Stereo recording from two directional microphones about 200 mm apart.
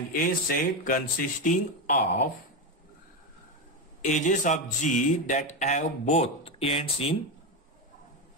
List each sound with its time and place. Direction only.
0.2 s speech: 45° left (ahead or behind)
4.0 s speech: 40° left (ahead or behind)